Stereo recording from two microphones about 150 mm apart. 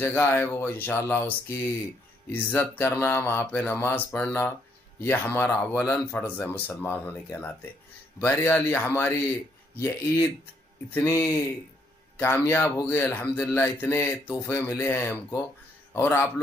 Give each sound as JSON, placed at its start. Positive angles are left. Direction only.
{"t": 0.0, "sound": "a man's voice", "side_deg": 15}